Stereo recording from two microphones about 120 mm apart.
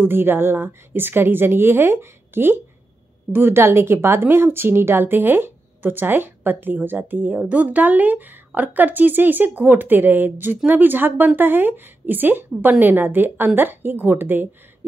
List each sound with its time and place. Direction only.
0.0 s a woman's voice: 15° right (ahead or behind)